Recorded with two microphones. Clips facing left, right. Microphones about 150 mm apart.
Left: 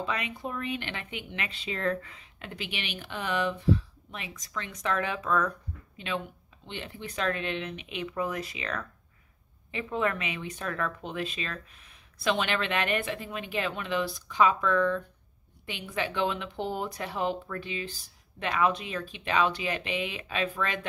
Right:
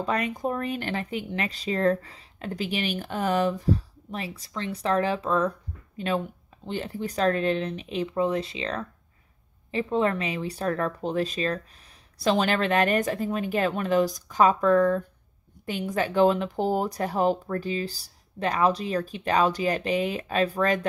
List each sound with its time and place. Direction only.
0.0 s speech: 45° right (ahead or behind)
5.9 s speech: 40° right (ahead or behind)